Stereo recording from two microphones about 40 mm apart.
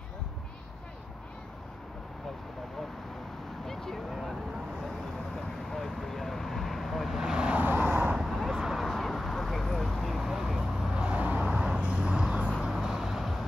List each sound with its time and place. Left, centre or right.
3.6 s vehicle: centre
4.1 s vehicle: centre
5.7 s vehicle: centre
7.2 s vehicle: centre
7.6 s vehicle: right
8.2 s a sound: centre
8.8 s vehicle: centre
10.9 s vehicle: right
12.8 s vehicle: centre